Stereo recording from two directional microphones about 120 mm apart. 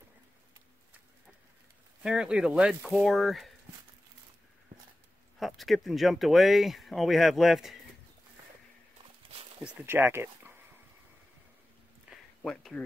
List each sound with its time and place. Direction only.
2.0 s speech: 5° right (ahead or behind)
5.4 s speech: centre (ahead or behind)
9.6 s speech: 10° right (ahead or behind)
9.8 s speech: 20° right (ahead or behind)
12.1 s a sound: 5° left (ahead or behind)